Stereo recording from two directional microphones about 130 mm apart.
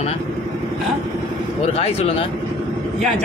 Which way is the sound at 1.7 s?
50° left (ahead or behind).